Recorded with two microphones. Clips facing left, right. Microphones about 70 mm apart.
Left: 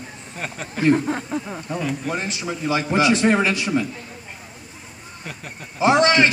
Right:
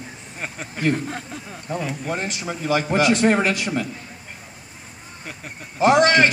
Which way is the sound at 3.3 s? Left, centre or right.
Right.